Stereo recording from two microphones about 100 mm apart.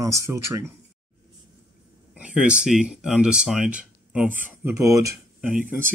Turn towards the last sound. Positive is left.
turn(degrees=-15)  # may be behind; listen again after turning